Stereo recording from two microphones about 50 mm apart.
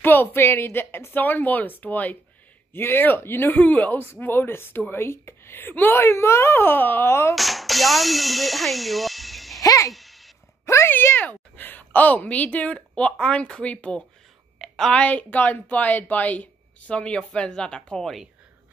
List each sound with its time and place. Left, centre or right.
0.0 s speech: left
2.7 s speech: left
7.3 s speech: centre
9.9 s a sound: centre
10.6 s a sound: left
10.9 s speech: left
11.1 s a woman's voice: left
14.6 s a sound: centre
15.0 s speech: left; by 18.1 s centre